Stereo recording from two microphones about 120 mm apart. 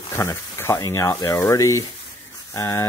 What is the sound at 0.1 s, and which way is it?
Speech, 20° left (ahead or behind).